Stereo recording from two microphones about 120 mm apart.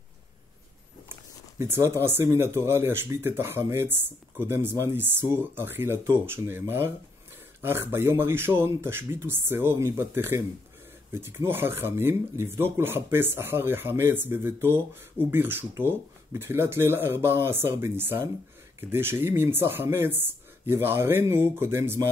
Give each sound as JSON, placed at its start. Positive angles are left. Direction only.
{"t": 1.6, "sound": "speech", "side_deg": -20}
{"t": 7.6, "sound": "speech", "side_deg": -20}